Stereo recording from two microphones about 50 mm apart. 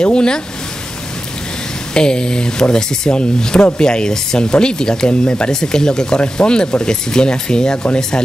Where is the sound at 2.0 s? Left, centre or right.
Centre.